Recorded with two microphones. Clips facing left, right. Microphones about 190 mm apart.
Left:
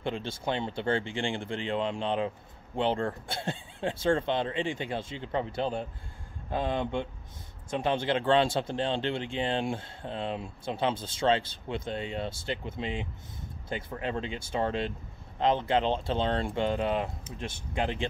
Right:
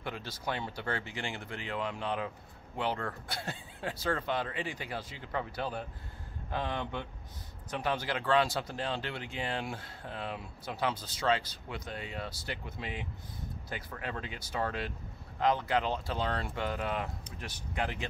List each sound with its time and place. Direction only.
0.0 s speech: 25° left (ahead or behind)